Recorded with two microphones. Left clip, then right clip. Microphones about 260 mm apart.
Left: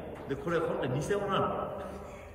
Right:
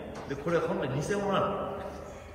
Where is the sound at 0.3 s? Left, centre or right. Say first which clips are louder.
Right 2 dB; centre.